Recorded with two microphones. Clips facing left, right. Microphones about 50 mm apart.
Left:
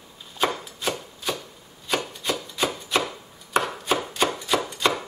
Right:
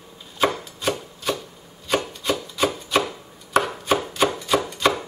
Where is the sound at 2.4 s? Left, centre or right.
Centre.